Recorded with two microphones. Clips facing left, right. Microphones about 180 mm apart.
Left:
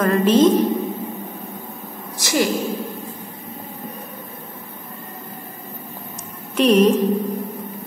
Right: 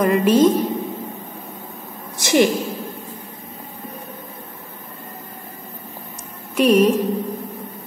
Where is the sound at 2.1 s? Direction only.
25° right (ahead or behind).